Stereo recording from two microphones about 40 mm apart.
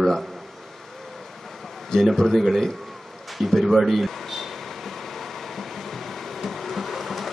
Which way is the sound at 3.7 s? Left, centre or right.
Centre.